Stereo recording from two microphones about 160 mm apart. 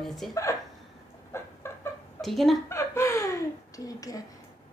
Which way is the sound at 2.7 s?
15° left (ahead or behind).